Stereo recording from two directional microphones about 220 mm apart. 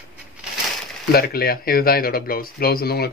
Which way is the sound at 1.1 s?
45° left (ahead or behind).